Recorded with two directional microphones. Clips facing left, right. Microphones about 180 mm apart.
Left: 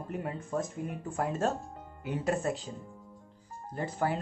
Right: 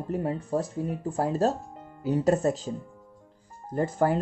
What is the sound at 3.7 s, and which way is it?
Speech, 45° right (ahead or behind).